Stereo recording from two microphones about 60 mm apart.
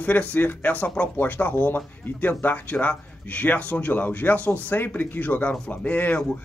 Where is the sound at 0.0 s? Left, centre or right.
Left.